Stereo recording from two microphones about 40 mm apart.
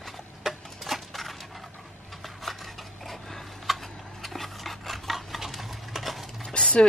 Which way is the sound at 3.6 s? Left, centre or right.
Centre.